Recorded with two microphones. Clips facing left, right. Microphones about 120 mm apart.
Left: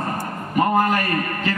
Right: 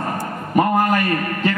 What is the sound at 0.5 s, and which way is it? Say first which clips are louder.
Speech: right 2 dB; 40° right (ahead or behind).